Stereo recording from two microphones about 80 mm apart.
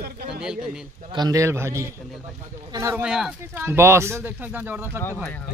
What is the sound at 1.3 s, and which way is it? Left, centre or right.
Speech, right.